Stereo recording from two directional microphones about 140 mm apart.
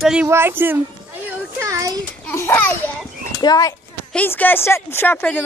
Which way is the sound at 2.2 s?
15° left (ahead or behind).